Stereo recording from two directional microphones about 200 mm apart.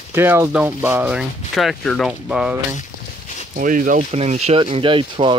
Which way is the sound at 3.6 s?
40° right (ahead or behind).